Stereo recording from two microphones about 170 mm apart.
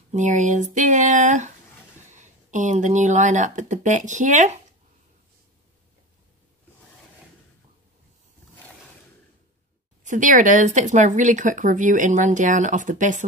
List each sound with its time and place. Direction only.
0.1 s speech: 45° right (ahead or behind)
10.0 s speech: 50° right (ahead or behind)